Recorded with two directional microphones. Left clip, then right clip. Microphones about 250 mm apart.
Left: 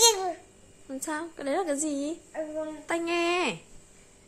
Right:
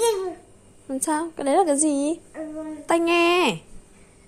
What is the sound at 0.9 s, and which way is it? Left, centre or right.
Speech, centre.